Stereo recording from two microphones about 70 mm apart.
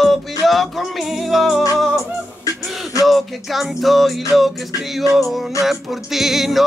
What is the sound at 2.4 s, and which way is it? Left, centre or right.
Music, left.